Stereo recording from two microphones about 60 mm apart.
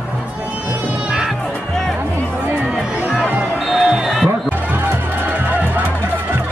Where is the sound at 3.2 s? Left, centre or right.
Right.